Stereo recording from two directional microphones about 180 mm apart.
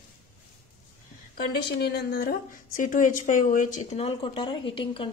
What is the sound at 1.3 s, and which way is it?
A woman's voice, 60° left (ahead or behind).